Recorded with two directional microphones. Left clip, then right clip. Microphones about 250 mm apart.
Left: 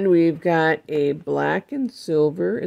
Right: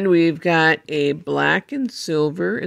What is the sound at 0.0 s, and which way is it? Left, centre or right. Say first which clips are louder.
Speech: right 1 dB; centre.